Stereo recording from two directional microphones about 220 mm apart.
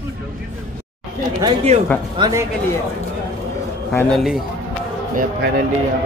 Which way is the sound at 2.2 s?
15° right (ahead or behind).